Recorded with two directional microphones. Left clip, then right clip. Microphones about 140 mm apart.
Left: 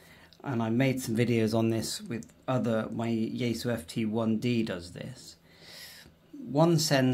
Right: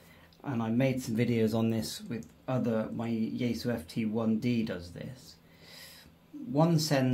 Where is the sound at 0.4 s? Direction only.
55° left (ahead or behind).